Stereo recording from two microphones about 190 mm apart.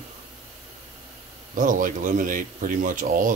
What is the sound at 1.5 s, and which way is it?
Speech, 45° right (ahead or behind).